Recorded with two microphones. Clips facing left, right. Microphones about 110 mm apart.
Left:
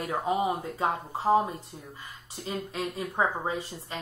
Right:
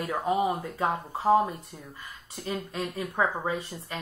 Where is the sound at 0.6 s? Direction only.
30° left (ahead or behind).